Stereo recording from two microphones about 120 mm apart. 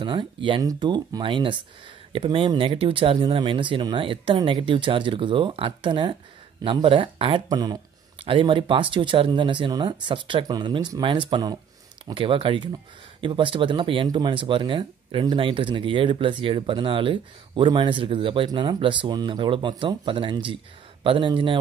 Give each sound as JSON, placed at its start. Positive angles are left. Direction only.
{"t": 0.0, "sound": "speech", "side_deg": -45}
{"t": 7.4, "sound": "speech", "side_deg": -35}
{"t": 8.2, "sound": "speech", "side_deg": -45}